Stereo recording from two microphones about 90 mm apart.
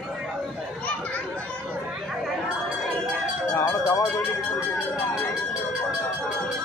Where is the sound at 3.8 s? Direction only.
35° left (ahead or behind).